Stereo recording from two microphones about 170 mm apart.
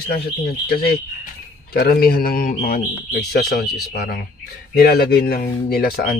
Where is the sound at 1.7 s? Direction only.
65° left (ahead or behind).